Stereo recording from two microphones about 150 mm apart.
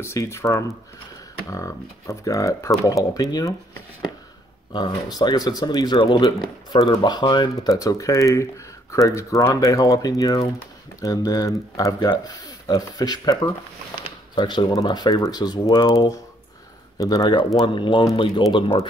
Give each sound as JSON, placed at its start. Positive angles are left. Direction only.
{"t": 0.0, "sound": "speech", "side_deg": 20}
{"t": 4.7, "sound": "speech", "side_deg": 30}